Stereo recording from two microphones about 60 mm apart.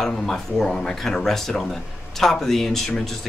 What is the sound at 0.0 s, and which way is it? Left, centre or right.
Speech, centre.